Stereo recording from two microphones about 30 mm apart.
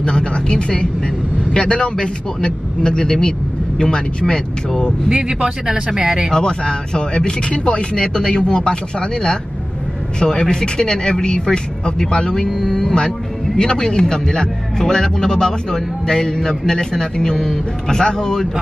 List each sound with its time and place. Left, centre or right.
0.0 s a sound: left
1.5 s a man's voice: left
5.1 s speech: right
6.3 s a man's voice: left
12.4 s speech: centre
13.6 s a man's voice: left
17.9 s a man's voice: left